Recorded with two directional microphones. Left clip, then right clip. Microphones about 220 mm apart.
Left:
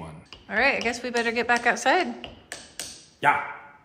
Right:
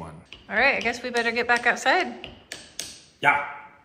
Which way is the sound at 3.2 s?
Centre (ahead or behind).